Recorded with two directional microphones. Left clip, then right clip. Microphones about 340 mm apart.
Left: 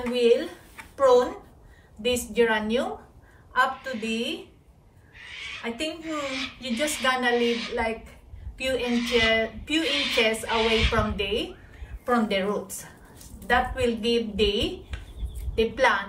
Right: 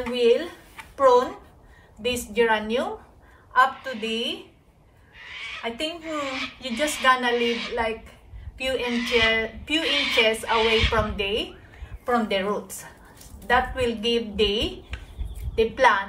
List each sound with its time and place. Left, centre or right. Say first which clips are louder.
0.0 s a woman's voice: right 1 dB; centre
5.5 s a woman's voice: right 2 dB; centre
7.0 s a woman's voice: right 3 dB; centre